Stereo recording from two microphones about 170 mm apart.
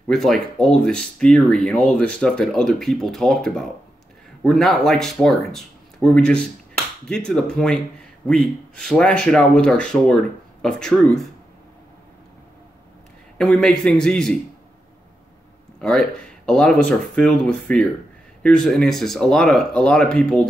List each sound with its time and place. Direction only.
0.1 s speech: centre (ahead or behind)
13.4 s speech: 5° left (ahead or behind)
15.8 s speech: 5° left (ahead or behind)